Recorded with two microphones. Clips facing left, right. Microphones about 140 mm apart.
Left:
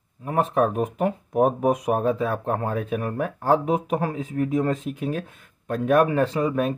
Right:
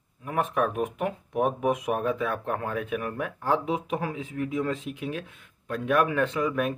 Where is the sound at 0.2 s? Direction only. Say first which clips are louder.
Left 5 dB; 35° left (ahead or behind).